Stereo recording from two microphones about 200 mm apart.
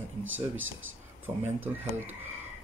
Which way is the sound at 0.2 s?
75° right (ahead or behind).